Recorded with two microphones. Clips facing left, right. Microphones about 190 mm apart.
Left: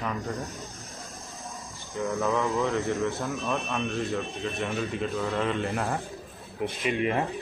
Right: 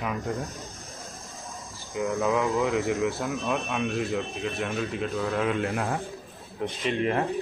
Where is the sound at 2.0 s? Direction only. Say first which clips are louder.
Right 2 dB; centre (ahead or behind).